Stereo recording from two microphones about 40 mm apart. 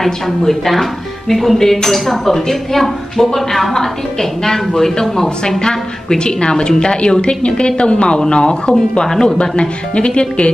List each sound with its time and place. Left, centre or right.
0.0 s speech: centre
5.6 s a woman's voice: centre
9.0 s speech: centre
9.4 s a woman's voice: left